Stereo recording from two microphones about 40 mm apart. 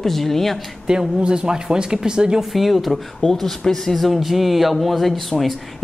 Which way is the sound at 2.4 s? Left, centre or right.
Centre.